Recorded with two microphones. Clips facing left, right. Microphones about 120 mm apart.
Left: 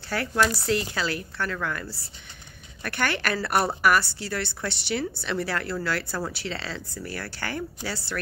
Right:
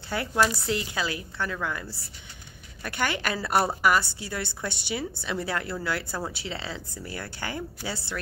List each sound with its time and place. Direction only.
0.1 s a woman's voice: 15° right (ahead or behind)